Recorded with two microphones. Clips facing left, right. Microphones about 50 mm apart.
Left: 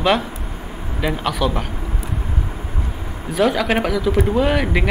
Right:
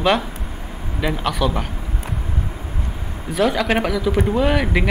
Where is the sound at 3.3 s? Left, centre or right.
Centre.